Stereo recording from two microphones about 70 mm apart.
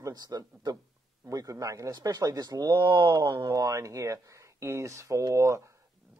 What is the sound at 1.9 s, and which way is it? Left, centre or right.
Speech, right.